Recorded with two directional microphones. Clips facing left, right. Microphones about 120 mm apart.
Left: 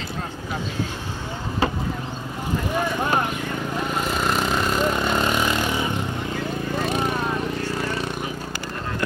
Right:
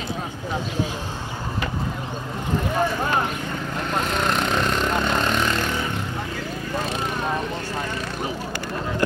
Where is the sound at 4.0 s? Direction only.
5° left (ahead or behind).